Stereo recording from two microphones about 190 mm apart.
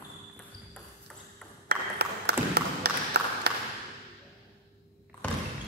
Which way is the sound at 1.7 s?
60° right (ahead or behind).